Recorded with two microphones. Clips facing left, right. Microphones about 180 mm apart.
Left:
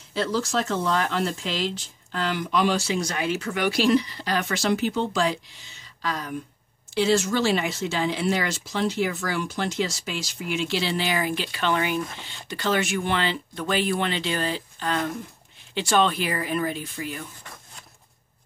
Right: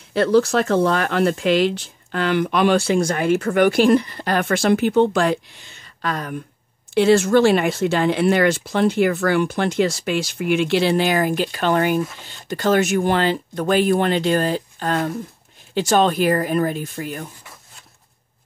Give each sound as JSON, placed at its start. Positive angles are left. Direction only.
{"t": 0.1, "sound": "speech", "side_deg": -60}